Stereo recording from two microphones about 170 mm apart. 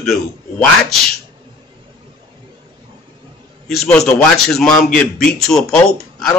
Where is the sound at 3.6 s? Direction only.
5° left (ahead or behind).